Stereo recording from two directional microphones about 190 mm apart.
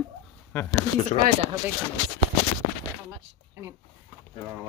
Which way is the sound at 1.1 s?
35° left (ahead or behind).